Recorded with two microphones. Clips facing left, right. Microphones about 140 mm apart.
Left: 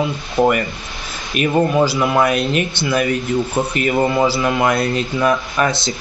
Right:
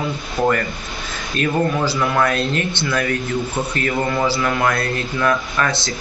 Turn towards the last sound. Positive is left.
turn(degrees=20)  # may be behind; listen again after turning